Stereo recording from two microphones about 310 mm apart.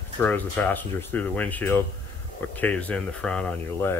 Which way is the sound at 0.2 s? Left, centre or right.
Centre.